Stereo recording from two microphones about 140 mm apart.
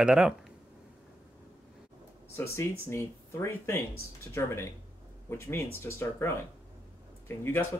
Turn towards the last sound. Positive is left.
turn(degrees=15)  # may be behind; listen again after turning